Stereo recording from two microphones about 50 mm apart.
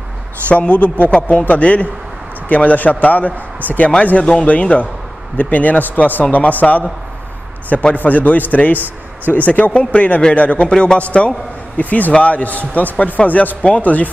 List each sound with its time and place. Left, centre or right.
0.5 s a man's voice: left
4.2 s speech: centre
4.7 s a man's voice: left
7.9 s a man's voice: left